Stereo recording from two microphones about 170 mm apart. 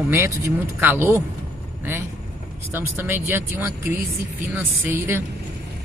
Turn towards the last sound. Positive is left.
turn(degrees=-15)  # may be behind; listen again after turning